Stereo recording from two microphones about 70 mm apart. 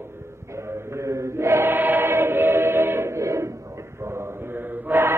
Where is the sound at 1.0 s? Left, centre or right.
Right.